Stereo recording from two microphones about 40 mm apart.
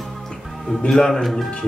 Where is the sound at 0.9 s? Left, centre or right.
Centre.